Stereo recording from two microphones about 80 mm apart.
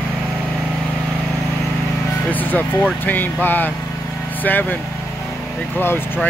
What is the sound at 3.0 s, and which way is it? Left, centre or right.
Speech, left.